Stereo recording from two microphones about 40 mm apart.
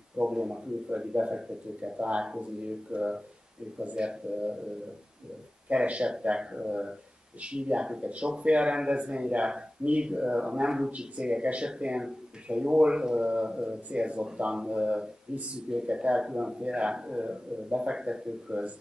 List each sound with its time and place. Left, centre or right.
0.2 s speech: right
5.7 s speech: right